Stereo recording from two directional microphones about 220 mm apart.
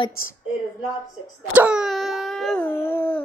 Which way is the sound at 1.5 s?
5° right (ahead or behind).